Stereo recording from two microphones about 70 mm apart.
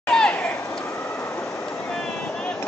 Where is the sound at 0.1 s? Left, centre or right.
Centre.